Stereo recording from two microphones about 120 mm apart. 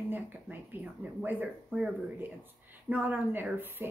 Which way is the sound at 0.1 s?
15° right (ahead or behind).